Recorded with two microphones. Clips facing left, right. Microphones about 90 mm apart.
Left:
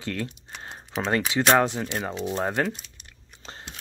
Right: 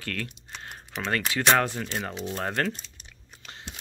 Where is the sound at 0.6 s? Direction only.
25° left (ahead or behind).